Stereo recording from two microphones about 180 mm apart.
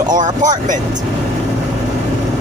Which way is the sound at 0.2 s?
45° right (ahead or behind).